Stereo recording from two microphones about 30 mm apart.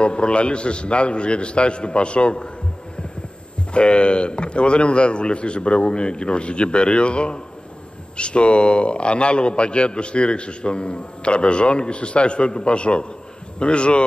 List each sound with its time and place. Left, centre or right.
0.0 s a man's voice: left
3.7 s a man's voice: left